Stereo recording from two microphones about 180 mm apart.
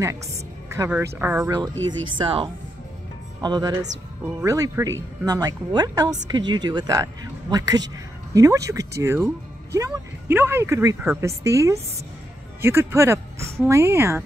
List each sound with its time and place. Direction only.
0.7 s a woman's voice: 10° right (ahead or behind)
1.5 s a woman's voice: 20° right (ahead or behind)